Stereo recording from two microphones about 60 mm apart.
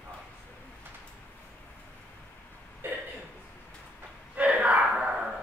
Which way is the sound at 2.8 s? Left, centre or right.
Right.